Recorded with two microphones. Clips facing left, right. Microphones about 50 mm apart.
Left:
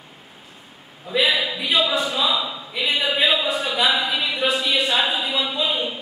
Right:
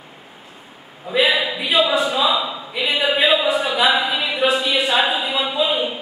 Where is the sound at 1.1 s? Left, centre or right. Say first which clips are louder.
Right 3 dB; centre.